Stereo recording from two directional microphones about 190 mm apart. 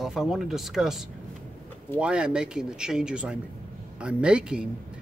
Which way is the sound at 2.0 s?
5° right (ahead or behind).